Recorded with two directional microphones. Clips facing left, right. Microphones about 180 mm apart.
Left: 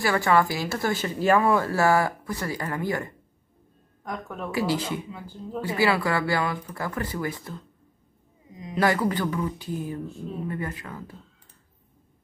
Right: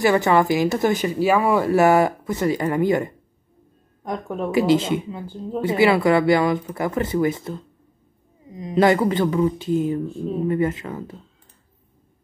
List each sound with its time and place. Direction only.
0.0 s speech: 20° right (ahead or behind)
8.7 s speech: 25° right (ahead or behind)